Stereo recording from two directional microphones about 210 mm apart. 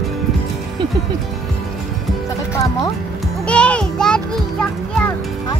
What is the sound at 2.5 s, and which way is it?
Music, 15° left (ahead or behind).